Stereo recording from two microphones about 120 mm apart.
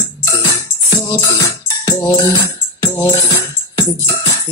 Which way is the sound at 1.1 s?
30° left (ahead or behind).